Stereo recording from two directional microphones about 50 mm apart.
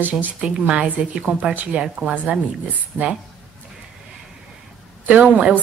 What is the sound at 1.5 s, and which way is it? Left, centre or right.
Speech, right.